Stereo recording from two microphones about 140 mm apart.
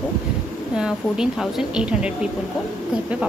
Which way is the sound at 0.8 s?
5° right (ahead or behind).